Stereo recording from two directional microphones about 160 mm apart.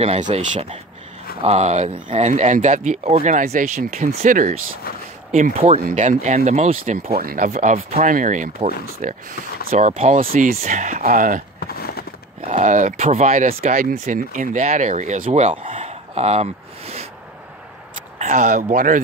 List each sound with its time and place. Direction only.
0.0 s speech: 40° right (ahead or behind)
7.2 s speech: 60° right (ahead or behind)
11.6 s a sound: 75° left (ahead or behind)
12.4 s speech: 50° right (ahead or behind)
13.9 s speech: 50° right (ahead or behind)
15.7 s a sound: 40° right (ahead or behind)
18.3 s speech: 55° right (ahead or behind)